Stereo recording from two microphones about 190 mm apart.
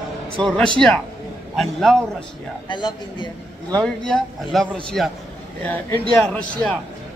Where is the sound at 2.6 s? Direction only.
25° left (ahead or behind).